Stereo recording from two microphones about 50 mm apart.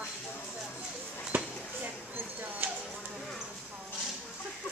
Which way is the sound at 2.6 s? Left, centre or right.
Right.